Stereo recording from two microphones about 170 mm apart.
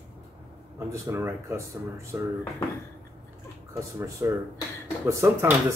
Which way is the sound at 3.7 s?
15° right (ahead or behind).